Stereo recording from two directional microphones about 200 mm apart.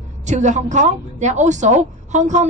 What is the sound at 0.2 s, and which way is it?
A woman's voice, 35° right (ahead or behind).